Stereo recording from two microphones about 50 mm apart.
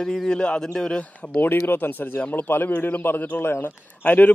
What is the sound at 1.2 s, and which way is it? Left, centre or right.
Speech, left.